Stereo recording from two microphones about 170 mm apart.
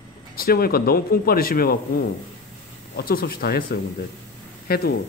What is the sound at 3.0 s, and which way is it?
Speech, 60° left (ahead or behind).